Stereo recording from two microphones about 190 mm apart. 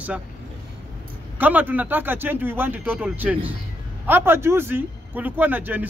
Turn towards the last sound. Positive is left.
turn(degrees=-10)  # may be behind; listen again after turning